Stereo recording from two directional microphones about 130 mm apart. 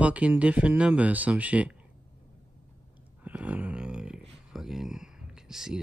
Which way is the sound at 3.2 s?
10° right (ahead or behind).